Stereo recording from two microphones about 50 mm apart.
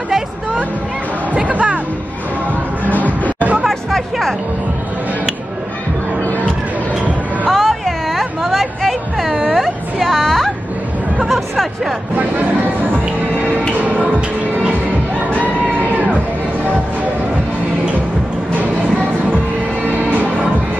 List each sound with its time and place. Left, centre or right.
1.3 s music: right
3.6 s music: centre
6.2 s music: left
7.5 s a sound: centre
9.5 s music: centre
13.7 s music: right
15.3 s music: right
18.5 s music: right